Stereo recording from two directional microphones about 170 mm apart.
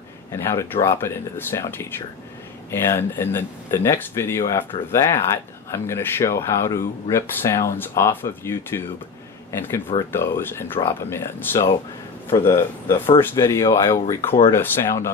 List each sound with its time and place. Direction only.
0.3 s speech: 15° left (ahead or behind)